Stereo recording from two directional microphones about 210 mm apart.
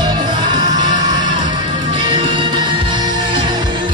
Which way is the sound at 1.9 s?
25° right (ahead or behind).